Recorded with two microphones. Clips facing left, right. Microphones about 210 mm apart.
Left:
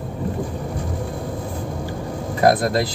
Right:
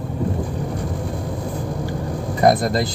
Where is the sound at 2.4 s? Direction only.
Centre (ahead or behind).